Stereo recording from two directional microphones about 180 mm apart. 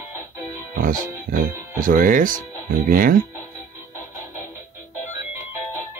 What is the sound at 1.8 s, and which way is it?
Speech, 50° right (ahead or behind).